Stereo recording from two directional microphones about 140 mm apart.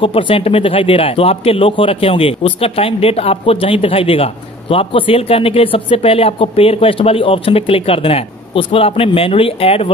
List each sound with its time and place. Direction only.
0.0 s a man's voice: 40° left (ahead or behind)